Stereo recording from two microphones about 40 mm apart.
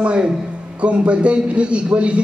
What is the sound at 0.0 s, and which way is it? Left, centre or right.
A man's voice, right.